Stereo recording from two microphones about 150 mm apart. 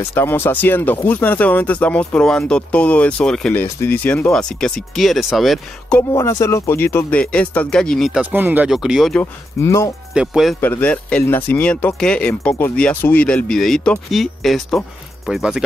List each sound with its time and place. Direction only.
0.0 s speech: 15° left (ahead or behind); by 5.9 s centre (ahead or behind)
6.1 s speech: 20° left (ahead or behind); by 9.2 s centre (ahead or behind)
9.2 s speech: 20° left (ahead or behind)
10.1 s speech: 5° right (ahead or behind)
10.6 s speech: 10° left (ahead or behind); by 15.6 s 5° right (ahead or behind)